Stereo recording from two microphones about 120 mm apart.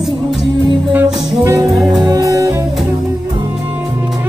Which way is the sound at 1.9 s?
30° right (ahead or behind).